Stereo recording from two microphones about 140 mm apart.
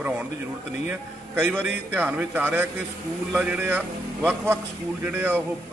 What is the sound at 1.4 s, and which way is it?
A man's voice, 10° right (ahead or behind).